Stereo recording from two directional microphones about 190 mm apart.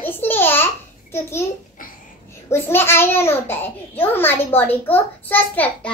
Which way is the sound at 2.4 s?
15° left (ahead or behind).